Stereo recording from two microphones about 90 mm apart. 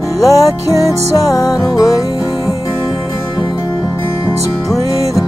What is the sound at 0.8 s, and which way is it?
Music, 40° left (ahead or behind).